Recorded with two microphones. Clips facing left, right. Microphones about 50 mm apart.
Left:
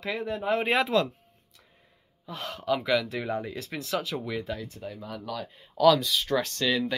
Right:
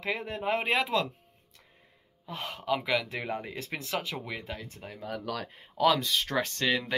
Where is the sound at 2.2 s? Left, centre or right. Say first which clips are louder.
Left 3 dB; right.